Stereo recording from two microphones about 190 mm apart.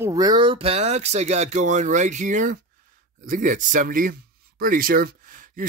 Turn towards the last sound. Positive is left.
turn(degrees=-50)  # may be behind; listen again after turning